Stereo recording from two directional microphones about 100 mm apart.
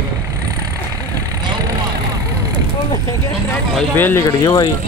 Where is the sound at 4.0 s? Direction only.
20° left (ahead or behind).